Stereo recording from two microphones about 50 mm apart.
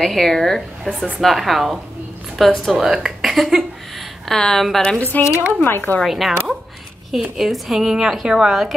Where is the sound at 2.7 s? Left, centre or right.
Centre.